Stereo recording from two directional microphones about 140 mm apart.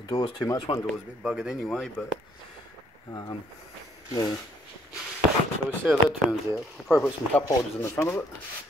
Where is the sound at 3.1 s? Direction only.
25° left (ahead or behind).